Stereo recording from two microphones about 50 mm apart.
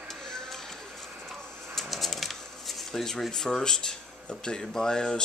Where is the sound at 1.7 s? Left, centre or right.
Centre.